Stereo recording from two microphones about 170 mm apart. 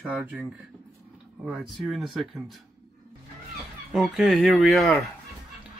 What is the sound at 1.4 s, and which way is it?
Speech, centre (ahead or behind).